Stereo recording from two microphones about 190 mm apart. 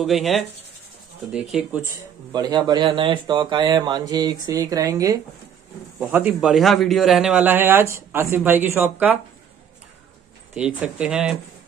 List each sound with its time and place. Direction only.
0.0 s speech: centre (ahead or behind)
2.3 s a man's voice: 20° right (ahead or behind)
10.5 s speech: 5° right (ahead or behind)